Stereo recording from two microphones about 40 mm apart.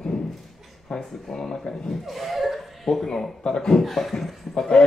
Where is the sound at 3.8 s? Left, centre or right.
Centre.